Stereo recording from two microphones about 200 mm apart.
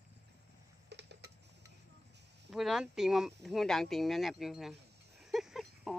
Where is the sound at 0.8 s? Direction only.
55° right (ahead or behind).